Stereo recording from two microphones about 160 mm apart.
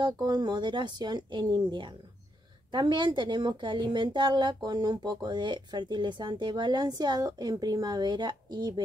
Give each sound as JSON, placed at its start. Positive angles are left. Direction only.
{"t": 0.0, "sound": "a woman's voice", "side_deg": -25}